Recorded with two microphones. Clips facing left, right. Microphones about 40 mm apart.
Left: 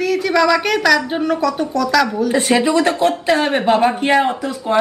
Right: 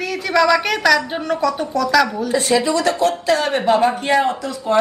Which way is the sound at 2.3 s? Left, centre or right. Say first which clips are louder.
Left 2 dB; left.